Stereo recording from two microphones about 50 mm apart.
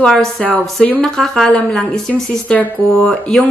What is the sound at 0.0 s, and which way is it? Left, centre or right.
A woman's voice, centre.